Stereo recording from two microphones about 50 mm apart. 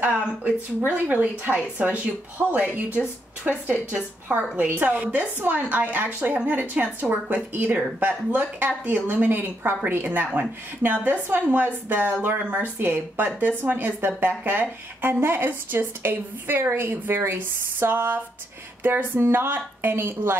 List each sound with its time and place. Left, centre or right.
0.1 s speech: right
5.0 s speech: right